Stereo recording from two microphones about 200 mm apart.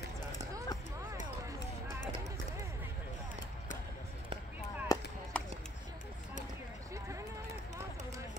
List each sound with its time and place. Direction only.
0.4 s clip-clop: 15° right (ahead or behind)
4.9 s chop: 15° left (ahead or behind)
5.3 s chop: 5° left (ahead or behind)